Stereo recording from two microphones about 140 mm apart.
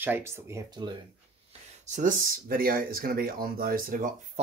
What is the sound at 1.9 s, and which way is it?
Speech, 65° right (ahead or behind).